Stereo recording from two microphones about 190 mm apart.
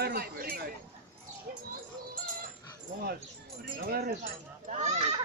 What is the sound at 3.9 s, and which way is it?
Speech, 50° right (ahead or behind).